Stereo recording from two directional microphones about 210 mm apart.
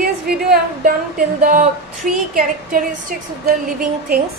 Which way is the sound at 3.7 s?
45° right (ahead or behind).